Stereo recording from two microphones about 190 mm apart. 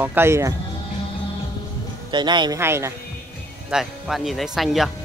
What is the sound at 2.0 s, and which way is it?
Speech, 25° right (ahead or behind).